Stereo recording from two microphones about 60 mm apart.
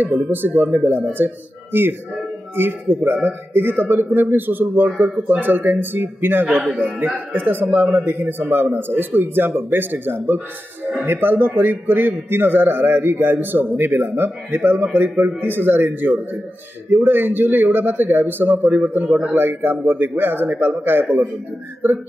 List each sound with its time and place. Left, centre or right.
0.3 s a man's voice: right
19.0 s a man's voice: centre
19.3 s a man's voice: right